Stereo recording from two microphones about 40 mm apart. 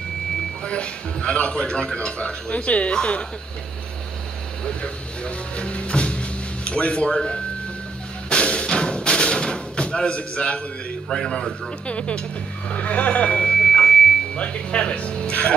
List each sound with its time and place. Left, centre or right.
0.7 s a man's voice: left
4.6 s speech: left
8.3 s music: left
11.1 s a man's voice: centre
11.9 s a man's voice: left
13.7 s a sound: centre
14.3 s a man's voice: left